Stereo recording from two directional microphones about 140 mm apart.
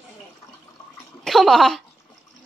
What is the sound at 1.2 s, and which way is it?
Speech, centre (ahead or behind).